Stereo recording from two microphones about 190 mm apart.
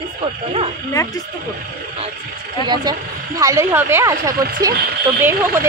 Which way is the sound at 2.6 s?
20° right (ahead or behind).